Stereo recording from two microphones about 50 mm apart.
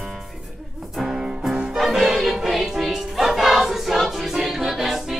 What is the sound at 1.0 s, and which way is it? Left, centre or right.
Music, centre.